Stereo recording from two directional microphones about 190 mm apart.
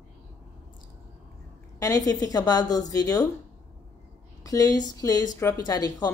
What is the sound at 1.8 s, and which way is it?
A woman's voice, 20° left (ahead or behind).